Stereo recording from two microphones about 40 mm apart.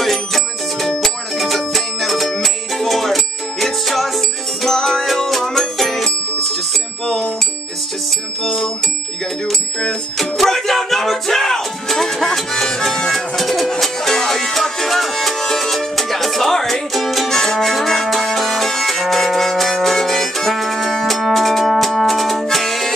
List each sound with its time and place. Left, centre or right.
0.0 s music: centre
9.5 s speech: left
10.1 s music: centre
16.9 s music: centre
17.3 s music: centre